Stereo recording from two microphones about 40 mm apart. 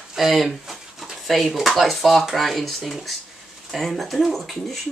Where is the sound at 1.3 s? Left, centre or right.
Centre.